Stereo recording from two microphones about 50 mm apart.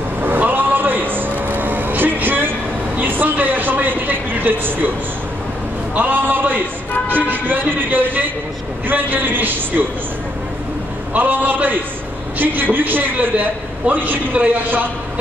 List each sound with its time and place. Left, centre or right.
0.2 s a sound: right
5.9 s a man's voice: right
11.1 s a man's voice: right
13.8 s a man's voice: right